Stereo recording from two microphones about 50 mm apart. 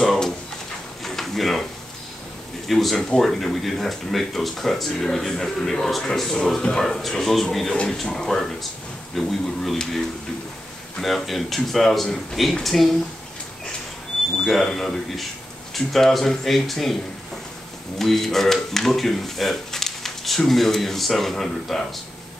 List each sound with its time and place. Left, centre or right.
0.0 s a sound: centre
2.6 s speech: centre
11.0 s speech: centre
14.3 s speech: centre
17.9 s speech: centre